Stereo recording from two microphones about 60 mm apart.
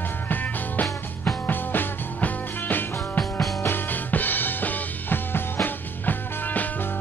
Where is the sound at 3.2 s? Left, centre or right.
Centre.